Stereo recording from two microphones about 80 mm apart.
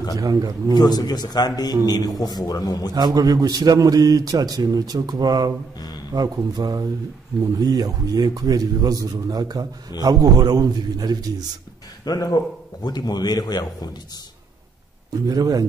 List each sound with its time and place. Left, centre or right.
0.2 s a man's voice: right
0.7 s a man's voice: left
3.1 s a man's voice: right
12.0 s a man's voice: left
15.2 s a man's voice: right